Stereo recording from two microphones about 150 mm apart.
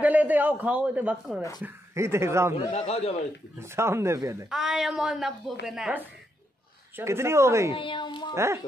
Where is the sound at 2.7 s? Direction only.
45° left (ahead or behind).